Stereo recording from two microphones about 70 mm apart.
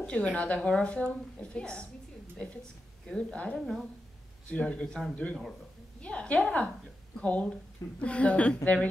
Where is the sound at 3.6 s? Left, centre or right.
Centre.